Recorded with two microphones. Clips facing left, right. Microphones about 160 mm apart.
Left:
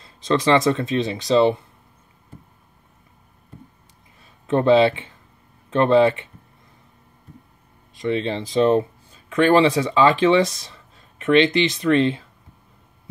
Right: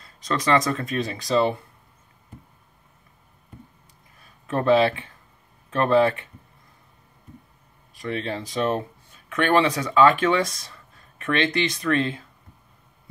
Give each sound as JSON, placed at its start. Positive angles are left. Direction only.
{"t": 0.0, "sound": "speech", "side_deg": 30}
{"t": 4.5, "sound": "speech", "side_deg": 25}
{"t": 7.9, "sound": "speech", "side_deg": 25}